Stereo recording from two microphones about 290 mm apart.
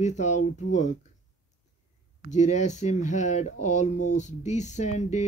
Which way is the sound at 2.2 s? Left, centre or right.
Left.